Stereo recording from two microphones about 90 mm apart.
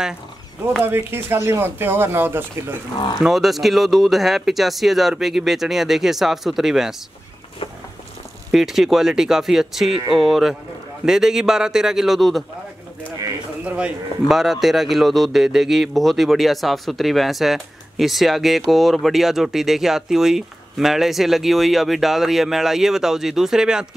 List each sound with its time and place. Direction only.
0.8 s speech: 25° right (ahead or behind)
3.2 s speech: centre (ahead or behind)
8.5 s speech: 5° right (ahead or behind)
13.7 s a man's voice: 10° right (ahead or behind)